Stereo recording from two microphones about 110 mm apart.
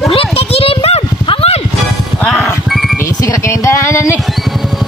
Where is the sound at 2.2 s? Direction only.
Centre (ahead or behind).